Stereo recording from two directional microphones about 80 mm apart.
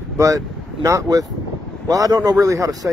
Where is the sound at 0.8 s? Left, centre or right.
Right.